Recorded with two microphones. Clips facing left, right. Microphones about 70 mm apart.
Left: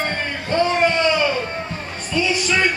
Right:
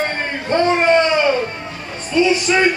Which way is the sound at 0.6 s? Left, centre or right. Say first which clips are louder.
Right 5 dB; right.